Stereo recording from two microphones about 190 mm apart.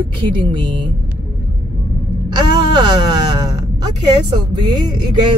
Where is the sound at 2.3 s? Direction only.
25° right (ahead or behind).